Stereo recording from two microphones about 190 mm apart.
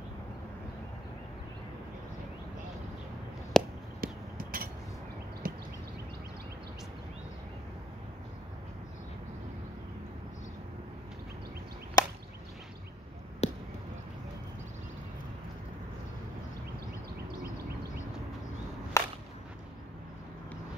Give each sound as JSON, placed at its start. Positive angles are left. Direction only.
{"t": 3.6, "sound": "a sound", "side_deg": 5}
{"t": 4.0, "sound": "a sound", "side_deg": -50}
{"t": 5.4, "sound": "clip-clop", "side_deg": -50}
{"t": 12.0, "sound": "chop", "side_deg": 20}
{"t": 13.4, "sound": "basketball bounce", "side_deg": 35}
{"t": 18.9, "sound": "whip", "side_deg": 15}